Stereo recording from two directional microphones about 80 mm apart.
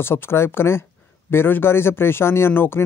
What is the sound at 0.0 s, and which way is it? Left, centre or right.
Speech, left.